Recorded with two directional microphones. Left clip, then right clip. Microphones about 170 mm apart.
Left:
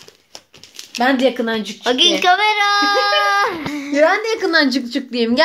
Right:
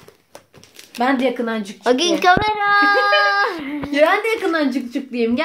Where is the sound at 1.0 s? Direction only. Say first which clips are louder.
Left 3 dB; 55° left (ahead or behind).